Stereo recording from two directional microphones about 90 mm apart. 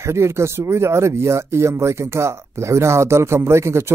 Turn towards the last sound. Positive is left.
turn(degrees=-30)  # may be behind; listen again after turning